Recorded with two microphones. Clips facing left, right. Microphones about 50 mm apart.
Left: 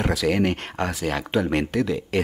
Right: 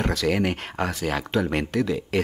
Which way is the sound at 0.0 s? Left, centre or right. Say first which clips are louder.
Left 2 dB; centre.